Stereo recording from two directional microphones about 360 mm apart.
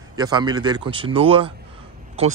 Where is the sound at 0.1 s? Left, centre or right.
Centre.